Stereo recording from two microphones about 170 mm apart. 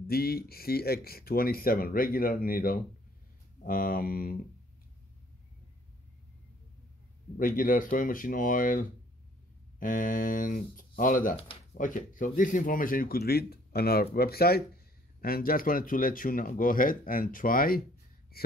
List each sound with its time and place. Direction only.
0.0 s speech: 65° left (ahead or behind)
7.3 s speech: 55° left (ahead or behind)